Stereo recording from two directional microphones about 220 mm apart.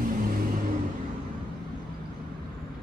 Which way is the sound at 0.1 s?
40° right (ahead or behind).